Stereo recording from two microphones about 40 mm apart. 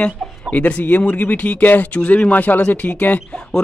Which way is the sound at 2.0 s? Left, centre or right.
Left.